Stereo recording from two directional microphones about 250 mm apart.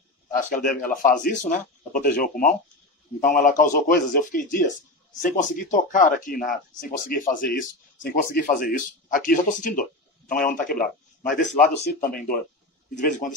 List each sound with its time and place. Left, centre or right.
0.3 s speech: left